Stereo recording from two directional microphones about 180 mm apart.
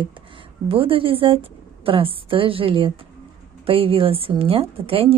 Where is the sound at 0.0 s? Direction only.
30° right (ahead or behind).